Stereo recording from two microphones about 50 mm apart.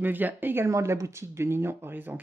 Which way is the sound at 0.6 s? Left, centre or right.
Right.